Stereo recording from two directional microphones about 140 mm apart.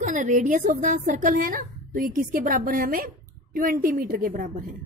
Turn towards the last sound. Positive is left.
turn(degrees=-85)